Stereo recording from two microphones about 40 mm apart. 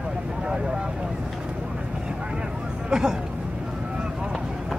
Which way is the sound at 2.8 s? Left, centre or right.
Centre.